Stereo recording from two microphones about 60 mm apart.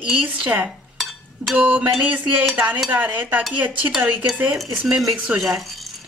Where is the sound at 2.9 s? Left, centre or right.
Right.